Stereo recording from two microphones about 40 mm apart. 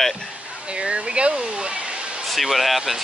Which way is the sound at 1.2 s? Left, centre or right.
Right.